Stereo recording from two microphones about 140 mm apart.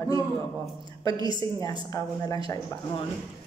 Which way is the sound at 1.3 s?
35° right (ahead or behind).